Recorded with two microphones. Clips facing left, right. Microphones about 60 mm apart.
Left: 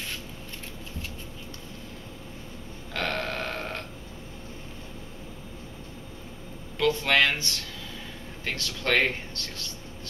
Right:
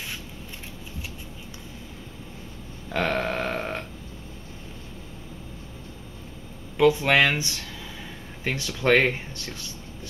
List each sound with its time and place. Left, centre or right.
2.9 s burping: centre
6.8 s speech: centre